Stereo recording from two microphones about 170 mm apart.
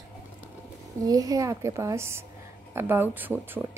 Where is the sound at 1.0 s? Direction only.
20° right (ahead or behind).